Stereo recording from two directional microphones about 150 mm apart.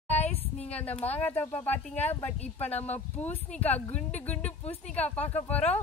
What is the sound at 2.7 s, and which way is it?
Speech, 10° left (ahead or behind).